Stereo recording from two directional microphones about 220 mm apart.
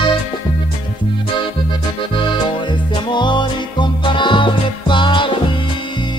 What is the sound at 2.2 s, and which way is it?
Music, 20° left (ahead or behind).